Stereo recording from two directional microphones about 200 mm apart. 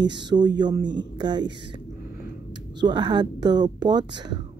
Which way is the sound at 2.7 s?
20° right (ahead or behind).